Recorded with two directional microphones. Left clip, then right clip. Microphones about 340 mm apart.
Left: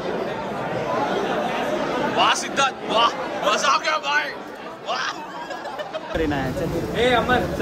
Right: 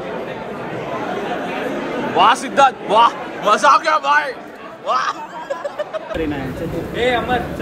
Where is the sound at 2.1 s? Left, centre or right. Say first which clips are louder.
Right 8 dB; centre.